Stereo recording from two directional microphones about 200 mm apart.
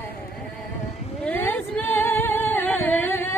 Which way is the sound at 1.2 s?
10° left (ahead or behind).